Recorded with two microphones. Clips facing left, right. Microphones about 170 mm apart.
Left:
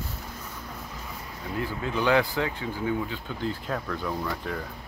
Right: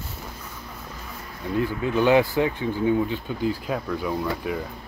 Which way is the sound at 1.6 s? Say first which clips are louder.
Right 5 dB; 20° right (ahead or behind).